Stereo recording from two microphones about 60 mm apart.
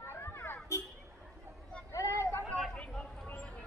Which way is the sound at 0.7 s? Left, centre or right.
Left.